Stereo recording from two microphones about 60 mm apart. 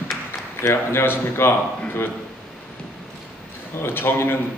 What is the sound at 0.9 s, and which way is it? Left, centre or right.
Speech, left.